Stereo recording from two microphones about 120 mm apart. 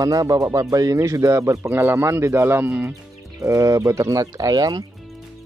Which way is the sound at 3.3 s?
25° right (ahead or behind).